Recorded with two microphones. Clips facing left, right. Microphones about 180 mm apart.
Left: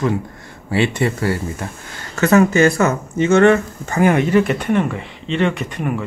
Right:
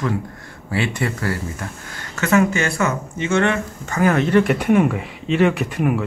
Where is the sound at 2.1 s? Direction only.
40° left (ahead or behind).